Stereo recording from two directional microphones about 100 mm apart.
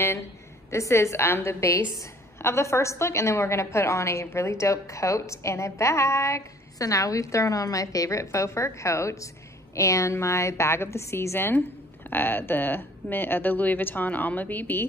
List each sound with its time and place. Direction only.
0.7 s a woman's voice: 30° left (ahead or behind)